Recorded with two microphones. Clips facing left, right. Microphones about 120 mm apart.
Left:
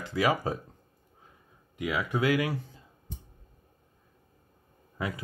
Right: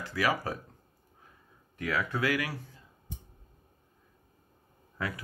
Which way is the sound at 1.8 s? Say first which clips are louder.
Left 2 dB; 15° left (ahead or behind).